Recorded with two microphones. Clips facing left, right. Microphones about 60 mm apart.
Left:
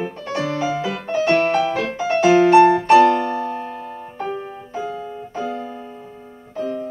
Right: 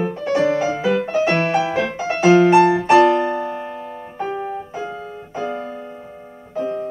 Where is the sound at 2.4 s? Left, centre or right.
Centre.